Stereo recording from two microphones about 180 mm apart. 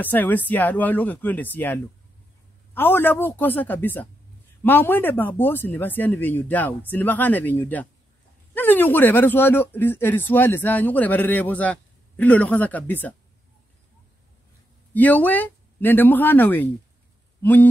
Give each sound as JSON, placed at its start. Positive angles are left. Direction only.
{"t": 0.0, "sound": "speech", "side_deg": 10}
{"t": 15.0, "sound": "speech", "side_deg": 10}
{"t": 17.4, "sound": "a sound", "side_deg": 10}